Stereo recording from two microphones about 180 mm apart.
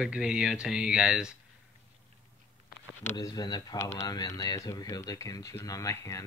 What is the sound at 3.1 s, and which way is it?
Speech, 20° left (ahead or behind).